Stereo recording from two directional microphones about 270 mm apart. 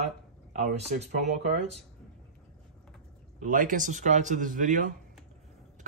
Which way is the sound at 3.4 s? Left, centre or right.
Right.